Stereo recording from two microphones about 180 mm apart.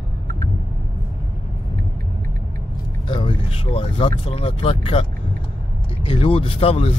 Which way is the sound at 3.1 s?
30° left (ahead or behind).